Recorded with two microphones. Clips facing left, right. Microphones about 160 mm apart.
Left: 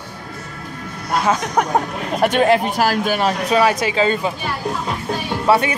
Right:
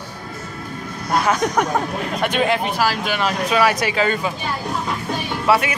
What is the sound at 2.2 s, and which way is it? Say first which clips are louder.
Speech: left 5 dB; 40° left (ahead or behind).